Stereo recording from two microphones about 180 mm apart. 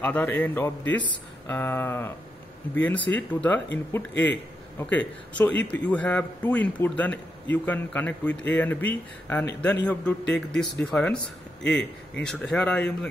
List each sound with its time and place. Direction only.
0.0 s a man's voice: 10° left (ahead or behind)